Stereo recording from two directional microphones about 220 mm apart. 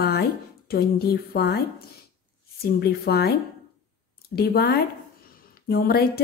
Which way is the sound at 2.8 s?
45° left (ahead or behind).